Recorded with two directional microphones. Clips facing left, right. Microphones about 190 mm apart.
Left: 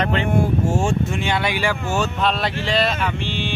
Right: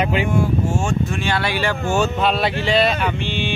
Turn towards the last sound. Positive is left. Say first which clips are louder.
# right 2 dB
turn(degrees=0)  # may be behind; listen again after turning